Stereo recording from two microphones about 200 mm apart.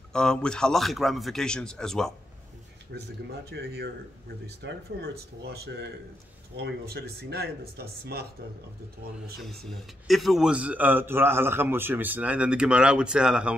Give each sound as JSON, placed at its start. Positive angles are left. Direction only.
{"t": 0.1, "sound": "a man's voice", "side_deg": 5}
{"t": 2.9, "sound": "a man's voice", "side_deg": -60}
{"t": 9.7, "sound": "a man's voice", "side_deg": 0}